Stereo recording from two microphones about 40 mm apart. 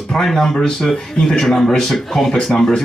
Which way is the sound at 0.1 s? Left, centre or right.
Centre.